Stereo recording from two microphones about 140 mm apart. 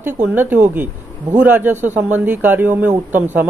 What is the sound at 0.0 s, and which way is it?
Speech, 15° right (ahead or behind).